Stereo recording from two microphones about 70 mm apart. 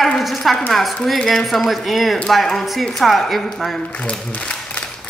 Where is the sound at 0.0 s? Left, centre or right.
Centre.